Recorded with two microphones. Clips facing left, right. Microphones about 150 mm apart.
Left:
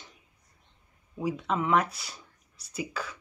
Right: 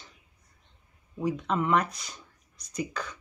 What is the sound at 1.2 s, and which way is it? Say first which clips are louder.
Speech: right 1 dB; 5° left (ahead or behind).